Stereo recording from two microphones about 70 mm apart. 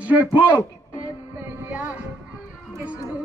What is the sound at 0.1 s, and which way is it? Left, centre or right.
Speech, right.